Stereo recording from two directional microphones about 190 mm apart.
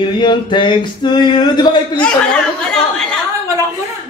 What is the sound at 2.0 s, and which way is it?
Chatter, 5° left (ahead or behind).